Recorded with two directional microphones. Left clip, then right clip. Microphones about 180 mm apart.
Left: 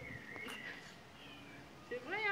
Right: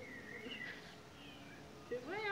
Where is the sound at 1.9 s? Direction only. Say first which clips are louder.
Right 1 dB; 50° right (ahead or behind).